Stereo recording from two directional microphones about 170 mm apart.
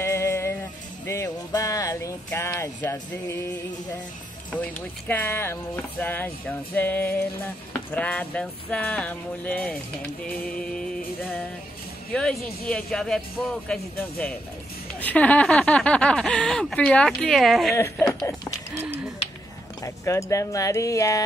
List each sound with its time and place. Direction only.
0.0 s music: 15° left (ahead or behind)
4.5 s speech: 10° left (ahead or behind)
17.7 s speech: 15° left (ahead or behind)
19.8 s speech: 20° left (ahead or behind)